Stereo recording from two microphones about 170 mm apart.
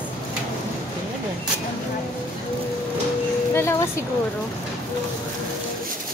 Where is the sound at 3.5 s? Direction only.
15° left (ahead or behind).